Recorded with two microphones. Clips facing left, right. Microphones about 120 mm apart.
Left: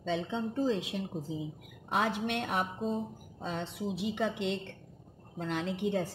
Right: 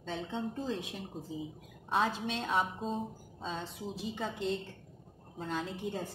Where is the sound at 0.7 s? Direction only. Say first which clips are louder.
Left 6 dB; 90° left.